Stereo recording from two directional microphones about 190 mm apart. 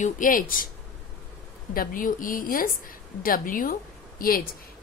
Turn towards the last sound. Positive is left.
turn(degrees=50)  # may be behind; listen again after turning